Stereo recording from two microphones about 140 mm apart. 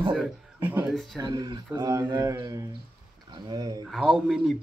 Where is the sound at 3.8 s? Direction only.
5° right (ahead or behind).